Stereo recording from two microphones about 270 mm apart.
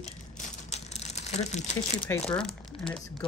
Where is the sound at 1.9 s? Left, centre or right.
Centre.